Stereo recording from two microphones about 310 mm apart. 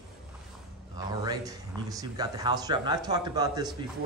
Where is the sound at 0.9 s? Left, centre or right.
Centre.